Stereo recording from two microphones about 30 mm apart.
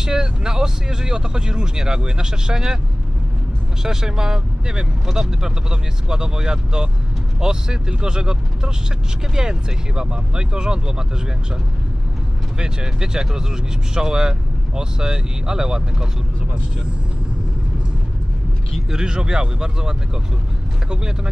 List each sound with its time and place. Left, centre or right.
0.0 s speech: right
3.8 s speech: centre
12.5 s speech: right
18.9 s speech: right